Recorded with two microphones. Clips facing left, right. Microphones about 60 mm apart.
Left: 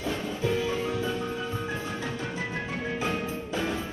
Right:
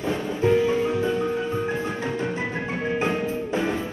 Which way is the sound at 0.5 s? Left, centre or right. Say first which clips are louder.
Right 8 dB; right.